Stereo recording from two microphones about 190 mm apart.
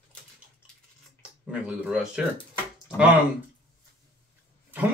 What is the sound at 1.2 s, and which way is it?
Speech, 5° right (ahead or behind).